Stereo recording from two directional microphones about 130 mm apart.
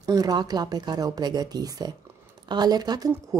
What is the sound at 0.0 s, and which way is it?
Speech, 30° right (ahead or behind).